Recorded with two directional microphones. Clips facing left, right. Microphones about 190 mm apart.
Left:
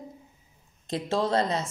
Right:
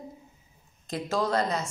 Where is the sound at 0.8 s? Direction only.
30° left (ahead or behind).